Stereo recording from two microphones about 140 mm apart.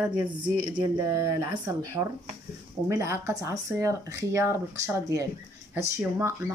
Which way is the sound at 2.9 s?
20° right (ahead or behind).